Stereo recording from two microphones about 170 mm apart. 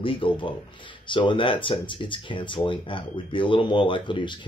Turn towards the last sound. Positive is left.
turn(degrees=30)  # may be behind; listen again after turning